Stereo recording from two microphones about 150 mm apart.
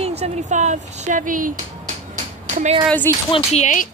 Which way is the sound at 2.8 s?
10° left (ahead or behind).